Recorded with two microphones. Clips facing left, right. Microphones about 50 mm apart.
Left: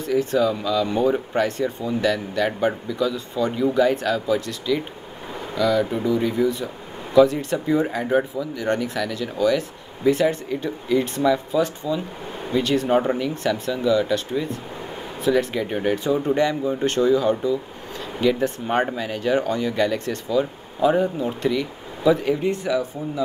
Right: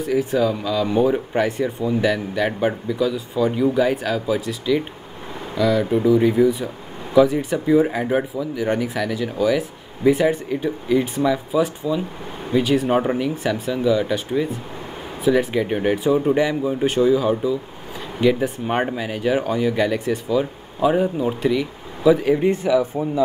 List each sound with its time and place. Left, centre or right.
0.0 s speech: centre
22.3 s speech: centre